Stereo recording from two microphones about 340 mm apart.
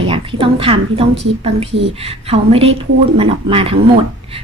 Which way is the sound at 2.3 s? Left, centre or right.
Centre.